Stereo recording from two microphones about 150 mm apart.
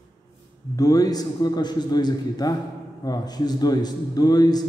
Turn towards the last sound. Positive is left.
turn(degrees=25)  # may be behind; listen again after turning